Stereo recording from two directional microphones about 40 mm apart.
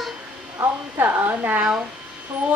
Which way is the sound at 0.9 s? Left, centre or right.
Right.